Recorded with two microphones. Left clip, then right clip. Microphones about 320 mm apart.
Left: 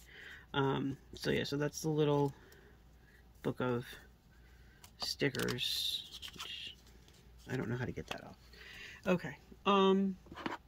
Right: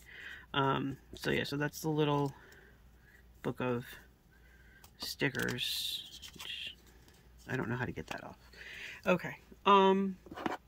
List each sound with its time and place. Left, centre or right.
0.1 s speech: centre
5.1 s speech: centre
6.1 s whispering: centre
6.5 s a sound: centre
7.4 s speech: centre
10.3 s speech: right